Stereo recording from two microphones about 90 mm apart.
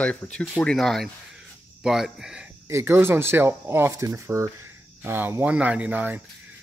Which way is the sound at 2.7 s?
30° right (ahead or behind).